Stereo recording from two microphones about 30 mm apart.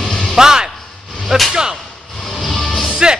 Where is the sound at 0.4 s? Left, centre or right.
Right.